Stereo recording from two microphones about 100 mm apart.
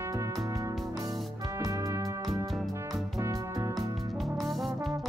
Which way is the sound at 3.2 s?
35° right (ahead or behind).